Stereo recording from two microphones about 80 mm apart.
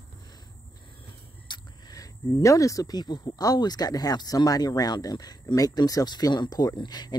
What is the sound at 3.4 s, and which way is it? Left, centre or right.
Speech, left.